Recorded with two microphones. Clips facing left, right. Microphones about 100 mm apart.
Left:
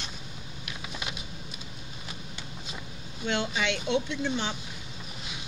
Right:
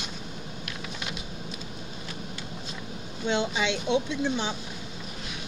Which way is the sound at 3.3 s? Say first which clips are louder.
Right 2 dB; 15° right (ahead or behind).